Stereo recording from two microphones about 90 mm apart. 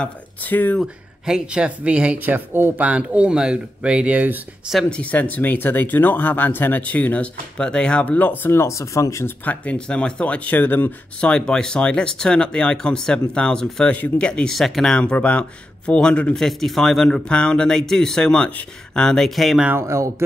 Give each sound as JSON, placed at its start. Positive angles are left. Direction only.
{"t": 0.0, "sound": "speech", "side_deg": 20}
{"t": 1.2, "sound": "speech", "side_deg": -10}
{"t": 4.8, "sound": "speech", "side_deg": 15}
{"t": 9.4, "sound": "speech", "side_deg": 15}
{"t": 16.4, "sound": "speech", "side_deg": 0}
{"t": 19.8, "sound": "a man's voice", "side_deg": -35}